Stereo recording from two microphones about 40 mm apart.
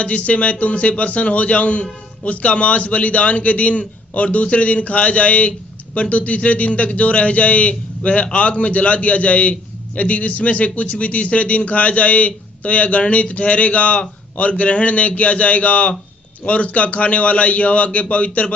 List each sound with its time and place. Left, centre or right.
0.0 s a man's voice: left